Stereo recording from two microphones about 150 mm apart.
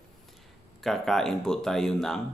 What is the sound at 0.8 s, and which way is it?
Speech, centre (ahead or behind).